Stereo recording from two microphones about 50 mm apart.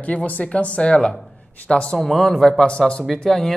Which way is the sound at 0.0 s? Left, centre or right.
Left.